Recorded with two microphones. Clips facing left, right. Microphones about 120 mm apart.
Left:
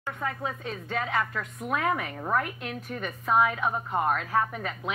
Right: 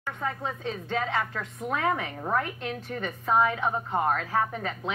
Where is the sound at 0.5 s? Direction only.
30° right (ahead or behind).